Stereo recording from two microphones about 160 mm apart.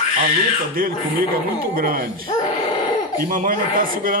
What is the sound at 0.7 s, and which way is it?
A man's voice, 65° right (ahead or behind).